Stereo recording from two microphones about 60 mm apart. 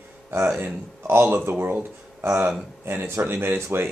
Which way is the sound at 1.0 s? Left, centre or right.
Right.